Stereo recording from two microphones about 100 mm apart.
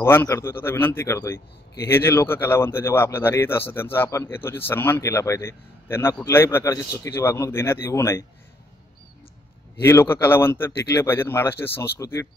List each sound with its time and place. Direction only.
0.0 s speech: 25° left (ahead or behind)
9.8 s speech: 25° left (ahead or behind)